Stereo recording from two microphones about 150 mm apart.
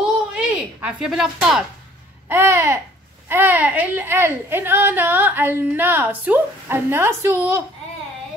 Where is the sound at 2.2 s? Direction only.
15° right (ahead or behind).